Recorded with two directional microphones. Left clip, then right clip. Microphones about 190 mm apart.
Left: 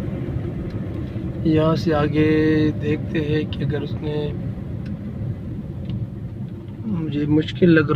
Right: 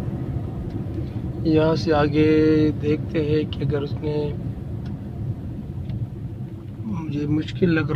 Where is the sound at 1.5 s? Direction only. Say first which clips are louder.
Right 1 dB; 5° right (ahead or behind).